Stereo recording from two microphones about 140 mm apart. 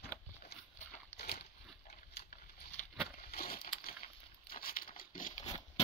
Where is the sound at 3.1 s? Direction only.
90° left.